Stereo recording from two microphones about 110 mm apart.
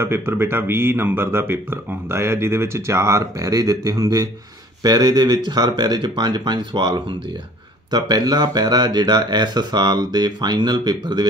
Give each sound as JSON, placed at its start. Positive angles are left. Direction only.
{"t": 0.0, "sound": "speech", "side_deg": -20}